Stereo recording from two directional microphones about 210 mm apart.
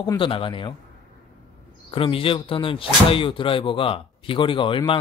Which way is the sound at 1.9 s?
25° left (ahead or behind).